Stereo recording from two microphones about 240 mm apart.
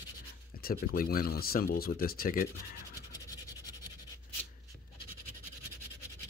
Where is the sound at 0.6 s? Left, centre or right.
Left.